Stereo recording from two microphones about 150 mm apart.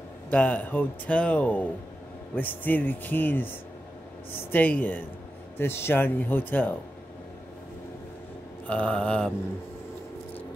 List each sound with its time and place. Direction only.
0.3 s speech: 10° left (ahead or behind)
8.6 s speech: 10° left (ahead or behind)